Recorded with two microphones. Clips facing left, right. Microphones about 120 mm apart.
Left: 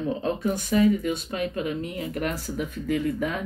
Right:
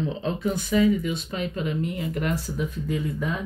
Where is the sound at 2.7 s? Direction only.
65° left (ahead or behind).